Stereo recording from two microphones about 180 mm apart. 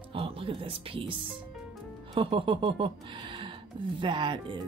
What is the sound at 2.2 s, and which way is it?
Speech, 30° right (ahead or behind).